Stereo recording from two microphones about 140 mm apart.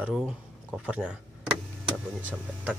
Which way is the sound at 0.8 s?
5° right (ahead or behind).